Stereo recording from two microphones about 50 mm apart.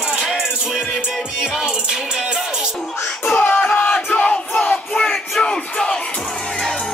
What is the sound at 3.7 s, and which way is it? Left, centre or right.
Battle cry, left.